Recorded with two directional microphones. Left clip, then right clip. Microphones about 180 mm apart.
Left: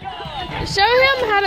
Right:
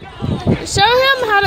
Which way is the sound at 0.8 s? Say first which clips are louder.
Right 2 dB; 10° right (ahead or behind).